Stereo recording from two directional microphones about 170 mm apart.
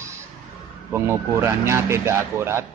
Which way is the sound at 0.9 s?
15° right (ahead or behind).